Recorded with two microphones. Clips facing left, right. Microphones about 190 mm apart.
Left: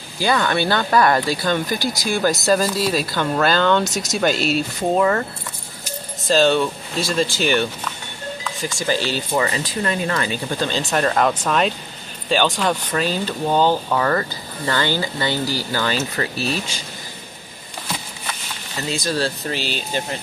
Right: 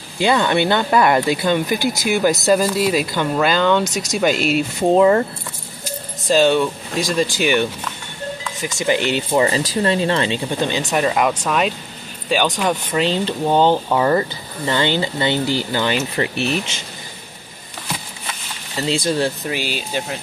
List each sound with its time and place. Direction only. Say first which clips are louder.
0.2 s speech: right 3 dB; 20° right (ahead or behind)
3.8 s speech: right 1 dB; centre (ahead or behind)
4.4 s speech: right 2 dB; 40° left (ahead or behind)
4.9 s speech: right 5 dB; 25° right (ahead or behind)
6.2 s speech: right 2 dB; 15° right (ahead or behind)
18.8 s speech: right 4 dB; 30° right (ahead or behind); by 20.2 s 10° right (ahead or behind)